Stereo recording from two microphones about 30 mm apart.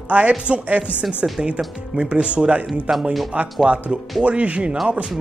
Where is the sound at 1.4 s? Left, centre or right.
Right.